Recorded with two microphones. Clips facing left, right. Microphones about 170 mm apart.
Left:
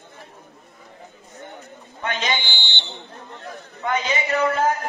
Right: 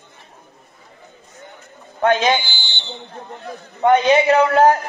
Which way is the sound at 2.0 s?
50° right (ahead or behind).